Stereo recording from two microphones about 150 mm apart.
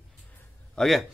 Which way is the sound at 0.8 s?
Centre (ahead or behind).